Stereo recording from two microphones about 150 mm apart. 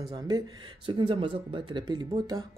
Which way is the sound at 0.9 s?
35° right (ahead or behind).